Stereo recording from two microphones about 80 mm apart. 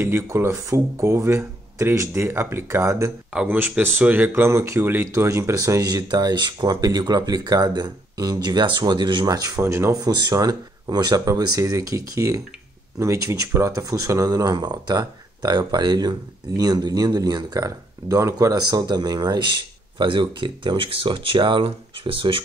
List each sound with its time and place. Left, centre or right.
0.0 s speech: right
3.4 s speech: right
4.3 s speech: right
9.6 s speech: right
9.9 s speech: right
18.6 s speech: right
20.0 s speech: right